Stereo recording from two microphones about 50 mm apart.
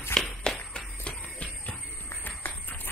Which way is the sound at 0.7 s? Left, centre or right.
Left.